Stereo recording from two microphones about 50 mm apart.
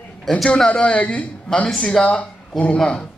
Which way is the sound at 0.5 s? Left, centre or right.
Centre.